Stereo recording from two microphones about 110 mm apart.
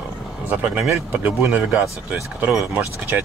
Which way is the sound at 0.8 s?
20° right (ahead or behind).